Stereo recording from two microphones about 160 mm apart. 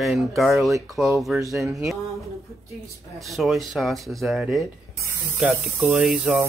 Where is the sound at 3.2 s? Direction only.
Centre (ahead or behind).